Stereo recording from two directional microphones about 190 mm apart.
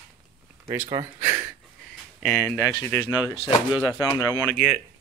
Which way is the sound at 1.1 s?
45° right (ahead or behind).